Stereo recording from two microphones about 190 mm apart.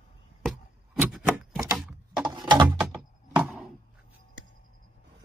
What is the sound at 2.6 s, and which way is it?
Music, 5° right (ahead or behind).